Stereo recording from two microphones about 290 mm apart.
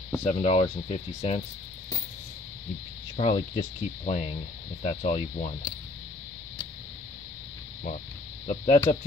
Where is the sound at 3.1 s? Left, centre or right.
Left.